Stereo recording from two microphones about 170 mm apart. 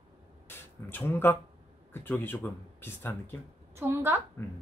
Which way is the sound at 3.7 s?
15° right (ahead or behind).